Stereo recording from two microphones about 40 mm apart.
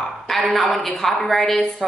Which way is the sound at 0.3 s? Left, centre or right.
Centre.